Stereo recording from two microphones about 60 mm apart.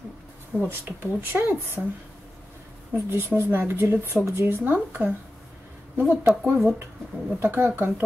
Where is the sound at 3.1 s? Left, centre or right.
Right.